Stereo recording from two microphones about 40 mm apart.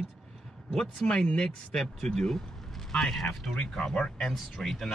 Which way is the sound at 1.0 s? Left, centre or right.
Left.